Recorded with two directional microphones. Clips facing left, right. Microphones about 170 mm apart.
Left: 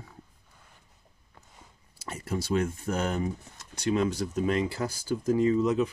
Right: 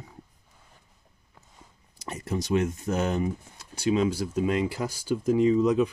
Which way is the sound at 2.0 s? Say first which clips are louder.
Right 2 dB; 20° right (ahead or behind).